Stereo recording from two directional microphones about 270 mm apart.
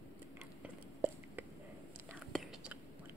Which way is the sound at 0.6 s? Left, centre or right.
Centre.